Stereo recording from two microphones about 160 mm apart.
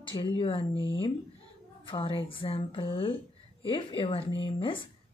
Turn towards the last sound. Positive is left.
turn(degrees=30)  # may be behind; listen again after turning